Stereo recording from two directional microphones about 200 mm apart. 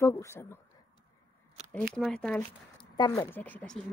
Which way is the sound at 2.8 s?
20° left (ahead or behind).